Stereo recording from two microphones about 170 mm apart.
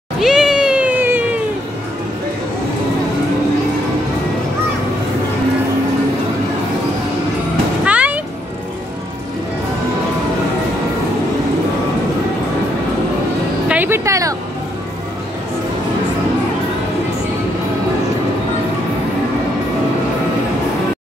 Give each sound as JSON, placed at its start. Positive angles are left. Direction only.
{"t": 0.2, "sound": "cat", "side_deg": -5}
{"t": 7.8, "sound": "music", "side_deg": -10}
{"t": 13.7, "sound": "music", "side_deg": -10}